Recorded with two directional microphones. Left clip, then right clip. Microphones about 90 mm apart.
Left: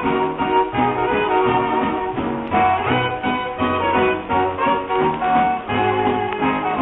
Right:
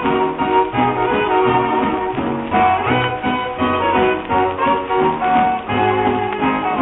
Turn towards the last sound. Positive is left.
turn(degrees=35)  # may be behind; listen again after turning